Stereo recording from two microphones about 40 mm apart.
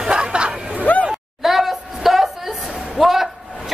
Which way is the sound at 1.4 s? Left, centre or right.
Centre.